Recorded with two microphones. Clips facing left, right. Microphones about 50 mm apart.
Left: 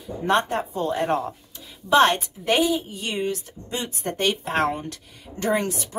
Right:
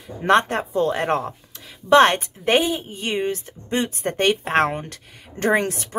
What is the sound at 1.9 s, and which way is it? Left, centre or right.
A woman's voice, right.